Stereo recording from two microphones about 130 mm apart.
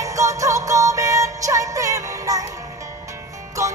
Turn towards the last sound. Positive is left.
turn(degrees=-25)  # may be behind; listen again after turning